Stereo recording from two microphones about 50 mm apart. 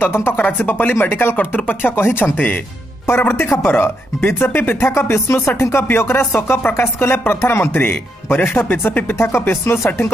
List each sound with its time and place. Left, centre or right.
0.0 s speech: left
0.4 s speech: left
0.9 s speech: left
2.3 s speech: left
3.1 s speech: left